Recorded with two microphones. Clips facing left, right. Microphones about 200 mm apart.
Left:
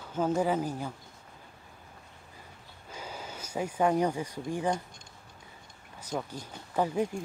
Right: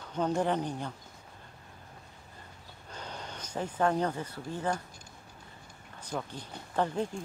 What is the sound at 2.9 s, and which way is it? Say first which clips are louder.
Speech: left 1 dB; 5° left (ahead or behind).